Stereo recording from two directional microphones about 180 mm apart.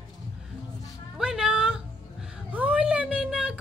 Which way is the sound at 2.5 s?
10° right (ahead or behind).